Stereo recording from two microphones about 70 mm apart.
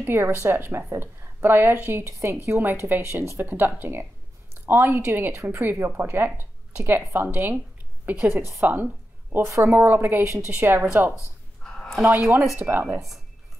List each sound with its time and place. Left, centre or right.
0.0 s a woman's voice: right
9.3 s a woman's voice: right
9.7 s a woman's voice: right
11.6 s a sound: centre
12.1 s a woman's voice: right